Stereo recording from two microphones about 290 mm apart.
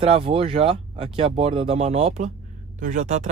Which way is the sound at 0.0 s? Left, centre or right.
Centre.